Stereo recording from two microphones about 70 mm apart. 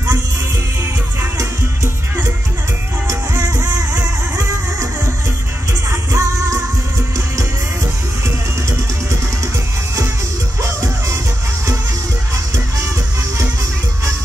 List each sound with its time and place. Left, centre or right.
3.1 s music: right
5.9 s music: right
10.6 s music: right